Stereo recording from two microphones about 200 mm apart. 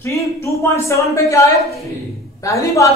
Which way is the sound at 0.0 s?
15° left (ahead or behind).